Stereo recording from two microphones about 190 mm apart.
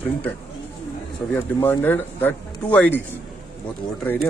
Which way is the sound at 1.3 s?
10° left (ahead or behind).